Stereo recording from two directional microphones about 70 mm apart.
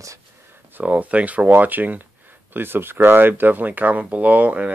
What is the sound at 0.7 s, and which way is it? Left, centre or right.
Speech, right.